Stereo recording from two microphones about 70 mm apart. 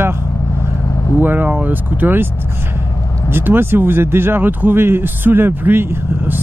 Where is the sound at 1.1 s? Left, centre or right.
Right.